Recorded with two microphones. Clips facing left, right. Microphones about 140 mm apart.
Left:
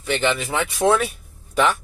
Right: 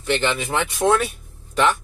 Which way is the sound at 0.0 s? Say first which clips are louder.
Even; 5° left (ahead or behind).